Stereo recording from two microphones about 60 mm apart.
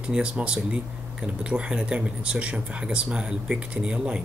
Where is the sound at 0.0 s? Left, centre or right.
Centre.